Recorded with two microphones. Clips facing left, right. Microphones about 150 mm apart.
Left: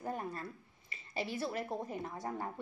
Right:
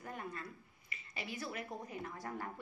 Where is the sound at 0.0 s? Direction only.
35° left (ahead or behind).